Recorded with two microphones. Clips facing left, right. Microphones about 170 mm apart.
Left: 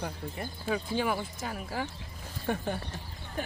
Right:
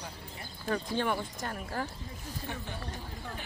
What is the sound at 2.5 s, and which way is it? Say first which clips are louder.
Speech: left 10 dB; 55° left (ahead or behind).